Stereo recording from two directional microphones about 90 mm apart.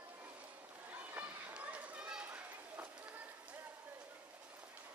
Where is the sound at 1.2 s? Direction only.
15° right (ahead or behind).